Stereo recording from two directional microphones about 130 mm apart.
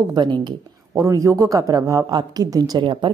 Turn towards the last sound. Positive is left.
turn(degrees=-35)  # may be behind; listen again after turning